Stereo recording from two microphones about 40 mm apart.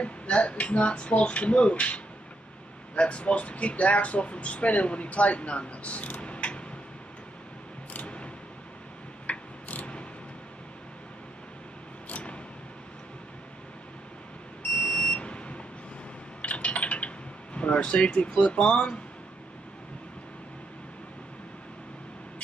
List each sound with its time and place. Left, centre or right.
0.0 s speech: left
3.0 s speech: left
6.2 s a sound: left
7.9 s a sound: left
9.3 s mechanisms: left
12.1 s a sound: left
14.9 s smoke detector: centre
15.1 s vehicle: left
16.3 s coin: left
17.6 s air conditioning: left
17.8 s speech: left